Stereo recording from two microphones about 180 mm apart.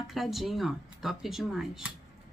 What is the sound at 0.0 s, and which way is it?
Speech, centre (ahead or behind).